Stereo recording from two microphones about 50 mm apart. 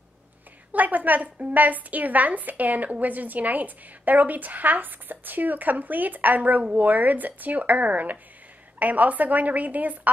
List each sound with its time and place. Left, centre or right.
0.7 s a woman's voice: right